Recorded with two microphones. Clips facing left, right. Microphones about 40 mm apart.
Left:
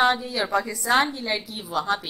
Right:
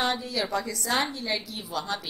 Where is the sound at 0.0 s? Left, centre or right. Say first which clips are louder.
Left 6 dB; left.